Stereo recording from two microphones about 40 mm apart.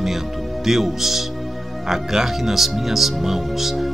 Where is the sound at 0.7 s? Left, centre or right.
Centre.